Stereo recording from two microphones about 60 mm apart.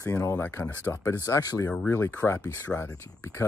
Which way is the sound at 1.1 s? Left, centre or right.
Left.